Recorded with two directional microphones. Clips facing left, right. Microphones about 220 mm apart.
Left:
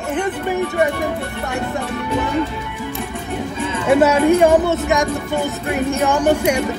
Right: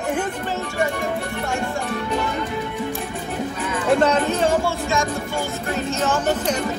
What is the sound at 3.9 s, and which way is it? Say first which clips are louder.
Speech: left 6 dB; 10° left (ahead or behind).